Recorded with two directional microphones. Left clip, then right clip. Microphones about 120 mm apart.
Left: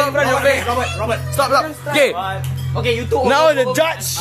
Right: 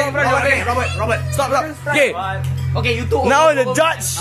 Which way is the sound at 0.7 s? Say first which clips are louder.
Right 1 dB; 25° left (ahead or behind).